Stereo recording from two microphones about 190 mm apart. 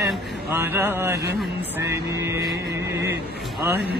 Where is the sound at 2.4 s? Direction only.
60° right (ahead or behind).